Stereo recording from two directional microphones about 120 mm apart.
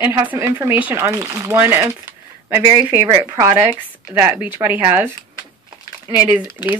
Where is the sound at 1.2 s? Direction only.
25° right (ahead or behind).